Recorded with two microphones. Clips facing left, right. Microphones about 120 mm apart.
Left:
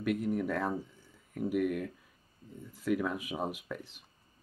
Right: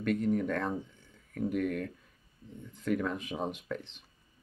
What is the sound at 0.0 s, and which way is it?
Speech, 5° left (ahead or behind).